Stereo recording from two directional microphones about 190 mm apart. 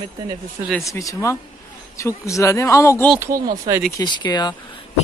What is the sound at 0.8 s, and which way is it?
Speech, 15° left (ahead or behind).